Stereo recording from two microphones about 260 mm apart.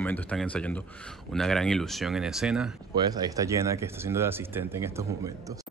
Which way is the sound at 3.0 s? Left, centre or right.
Centre.